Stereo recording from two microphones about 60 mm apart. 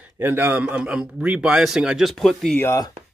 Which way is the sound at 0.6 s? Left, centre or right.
Right.